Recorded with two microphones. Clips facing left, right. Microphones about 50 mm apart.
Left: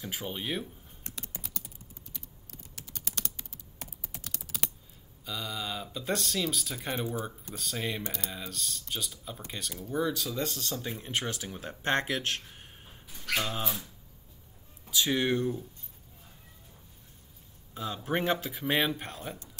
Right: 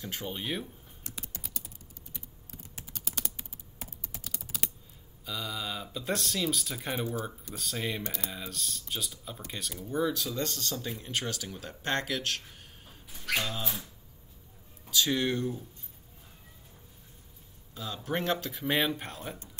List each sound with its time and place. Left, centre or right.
0.0 s speech: centre
1.4 s typing: centre
2.1 s computer keyboard: centre
4.4 s typing: centre
5.2 s speech: centre; by 13.0 s left
13.1 s a sound: centre
14.9 s speech: centre
17.7 s speech: left
18.5 s speech: centre